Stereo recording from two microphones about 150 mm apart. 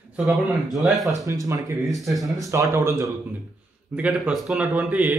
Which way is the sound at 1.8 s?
Centre (ahead or behind).